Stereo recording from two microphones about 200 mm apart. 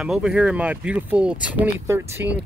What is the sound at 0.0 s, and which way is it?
Speech, 5° right (ahead or behind).